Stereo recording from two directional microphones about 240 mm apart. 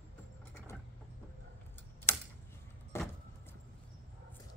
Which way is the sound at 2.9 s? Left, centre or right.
Centre.